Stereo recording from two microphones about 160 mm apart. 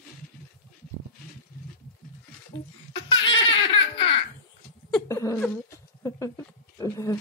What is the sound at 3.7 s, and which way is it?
Baby laughter, 35° left (ahead or behind).